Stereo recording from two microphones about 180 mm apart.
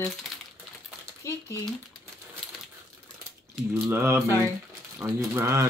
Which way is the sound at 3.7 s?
15° right (ahead or behind).